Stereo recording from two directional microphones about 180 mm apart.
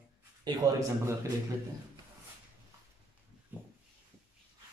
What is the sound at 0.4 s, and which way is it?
Speech, 20° right (ahead or behind).